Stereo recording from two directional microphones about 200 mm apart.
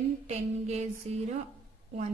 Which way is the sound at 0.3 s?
35° right (ahead or behind).